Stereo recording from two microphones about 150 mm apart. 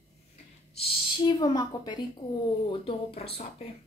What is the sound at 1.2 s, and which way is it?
A woman's voice, 30° left (ahead or behind).